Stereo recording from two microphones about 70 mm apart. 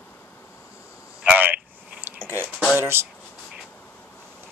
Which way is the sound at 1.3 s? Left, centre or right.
Right.